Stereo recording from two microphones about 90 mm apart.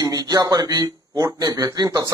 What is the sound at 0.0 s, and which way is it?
Speech, 45° right (ahead or behind).